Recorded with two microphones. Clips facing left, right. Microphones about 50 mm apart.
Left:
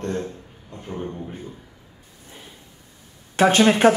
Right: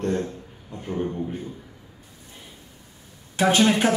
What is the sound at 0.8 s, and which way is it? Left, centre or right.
Speech, centre.